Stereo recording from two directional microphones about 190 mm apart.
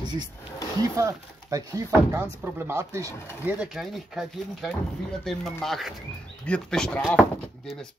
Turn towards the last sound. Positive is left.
turn(degrees=0)  # may be behind; listen again after turning